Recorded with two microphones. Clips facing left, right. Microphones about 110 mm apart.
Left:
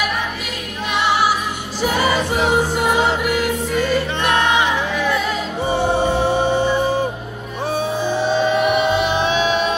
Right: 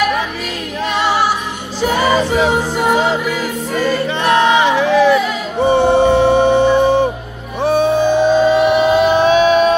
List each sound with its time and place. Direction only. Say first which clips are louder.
4.2 s music: right 7 dB; 90° right
5.6 s music: right 8 dB; 65° right (ahead or behind)
8.5 s music: right 5 dB; 40° right (ahead or behind)